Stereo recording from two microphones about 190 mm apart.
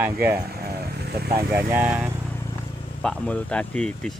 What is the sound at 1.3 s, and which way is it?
Speech, 10° right (ahead or behind).